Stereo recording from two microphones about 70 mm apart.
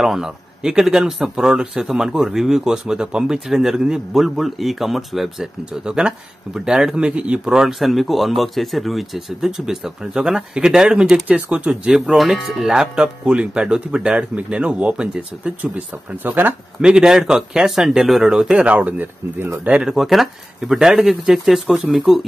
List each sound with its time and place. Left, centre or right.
0.0 s speech: centre
11.2 s speech: centre
16.8 s speech: centre
18.6 s speech: centre
19.9 s speech: centre